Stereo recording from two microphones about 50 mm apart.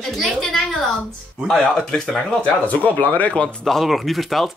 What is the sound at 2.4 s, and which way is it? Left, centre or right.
Speech, left.